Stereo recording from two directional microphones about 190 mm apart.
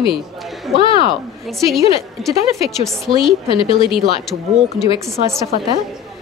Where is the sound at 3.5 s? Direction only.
25° left (ahead or behind).